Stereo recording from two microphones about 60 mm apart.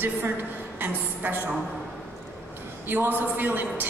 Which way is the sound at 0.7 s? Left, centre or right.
Right.